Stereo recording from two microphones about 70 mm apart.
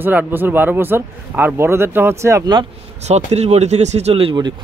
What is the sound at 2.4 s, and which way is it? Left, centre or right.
Speech, right.